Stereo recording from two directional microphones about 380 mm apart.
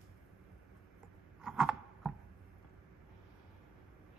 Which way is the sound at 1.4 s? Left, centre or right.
Centre.